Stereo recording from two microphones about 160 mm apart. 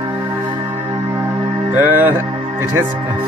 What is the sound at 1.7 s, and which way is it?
Speech, 15° right (ahead or behind).